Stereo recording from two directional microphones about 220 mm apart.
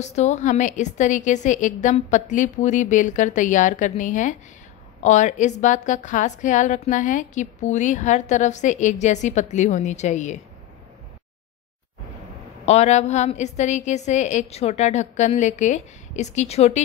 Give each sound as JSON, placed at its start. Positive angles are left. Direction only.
{"t": 0.0, "sound": "a woman's voice", "side_deg": 30}
{"t": 12.6, "sound": "a woman's voice", "side_deg": 30}